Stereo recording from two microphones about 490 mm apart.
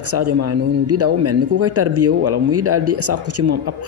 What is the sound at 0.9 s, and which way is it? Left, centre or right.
A man's voice, right.